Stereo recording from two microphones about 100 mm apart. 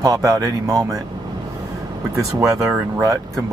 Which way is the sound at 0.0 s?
35° right (ahead or behind).